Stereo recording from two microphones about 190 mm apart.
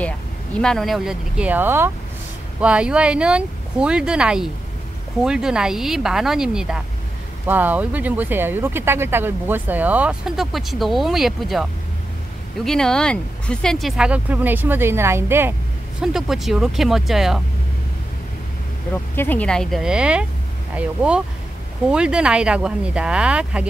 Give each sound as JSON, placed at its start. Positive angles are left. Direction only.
{"t": 0.6, "sound": "speech", "side_deg": 5}
{"t": 12.6, "sound": "speech", "side_deg": 5}
{"t": 19.1, "sound": "speech", "side_deg": 10}